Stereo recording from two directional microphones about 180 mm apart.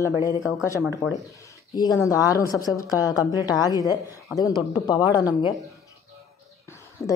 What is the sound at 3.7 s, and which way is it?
Speech, 20° right (ahead or behind).